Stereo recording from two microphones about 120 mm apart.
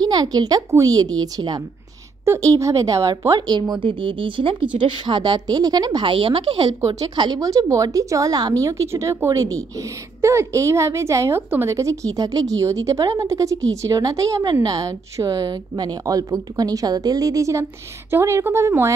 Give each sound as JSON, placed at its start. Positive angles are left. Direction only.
{"t": 0.1, "sound": "speech", "side_deg": -35}